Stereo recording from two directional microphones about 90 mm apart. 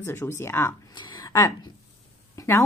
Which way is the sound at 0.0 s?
25° left (ahead or behind).